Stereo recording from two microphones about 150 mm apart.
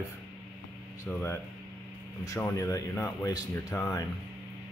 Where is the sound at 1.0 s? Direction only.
15° left (ahead or behind).